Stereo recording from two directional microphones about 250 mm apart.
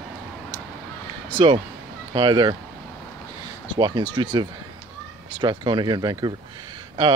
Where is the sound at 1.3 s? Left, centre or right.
Centre.